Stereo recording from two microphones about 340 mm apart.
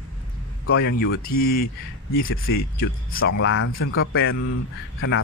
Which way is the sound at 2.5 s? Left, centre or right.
Left.